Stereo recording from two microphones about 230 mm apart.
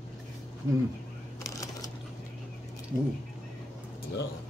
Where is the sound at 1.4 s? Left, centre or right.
Centre.